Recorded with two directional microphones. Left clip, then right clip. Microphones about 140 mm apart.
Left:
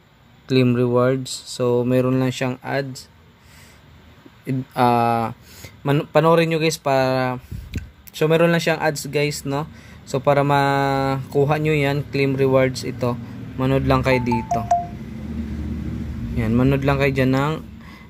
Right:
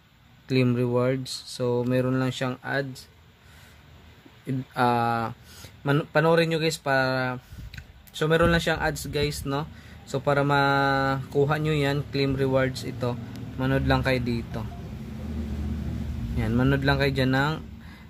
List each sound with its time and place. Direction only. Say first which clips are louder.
0.5 s speech: left 6 dB; 5° left (ahead or behind)
4.5 s speech: left 6 dB; 20° left (ahead or behind)
16.3 s speech: left 5 dB; 10° left (ahead or behind)